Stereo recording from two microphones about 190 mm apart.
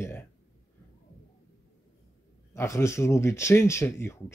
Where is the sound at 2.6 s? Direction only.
15° left (ahead or behind).